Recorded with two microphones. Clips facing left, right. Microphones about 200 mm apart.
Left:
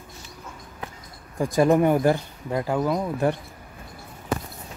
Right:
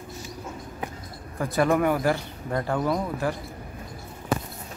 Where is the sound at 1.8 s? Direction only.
25° left (ahead or behind).